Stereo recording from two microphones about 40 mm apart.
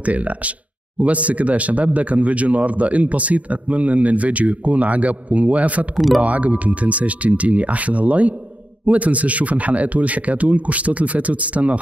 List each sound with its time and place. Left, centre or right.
0.0 s speech: right
5.9 s speech: centre
6.2 s speech: right